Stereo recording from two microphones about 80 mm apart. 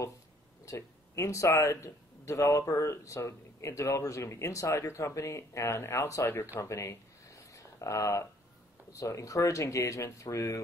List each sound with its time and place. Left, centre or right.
0.7 s speech: left
6.6 s a sound: left
8.9 s speech: left